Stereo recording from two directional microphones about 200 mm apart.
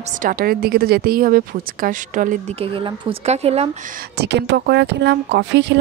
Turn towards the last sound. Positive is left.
turn(degrees=-60)  # may be behind; listen again after turning